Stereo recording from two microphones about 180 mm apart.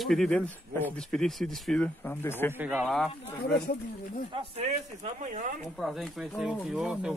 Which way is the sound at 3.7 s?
50° left (ahead or behind).